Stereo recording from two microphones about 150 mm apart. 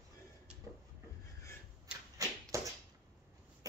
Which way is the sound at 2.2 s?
20° right (ahead or behind).